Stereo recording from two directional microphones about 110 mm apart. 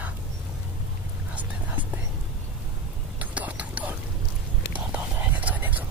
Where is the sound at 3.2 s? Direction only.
15° right (ahead or behind).